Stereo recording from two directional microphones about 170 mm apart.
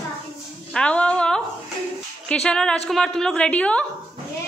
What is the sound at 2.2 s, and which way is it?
A woman's voice, 5° left (ahead or behind).